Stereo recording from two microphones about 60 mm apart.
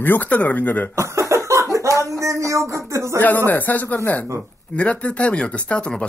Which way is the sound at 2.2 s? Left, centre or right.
Right.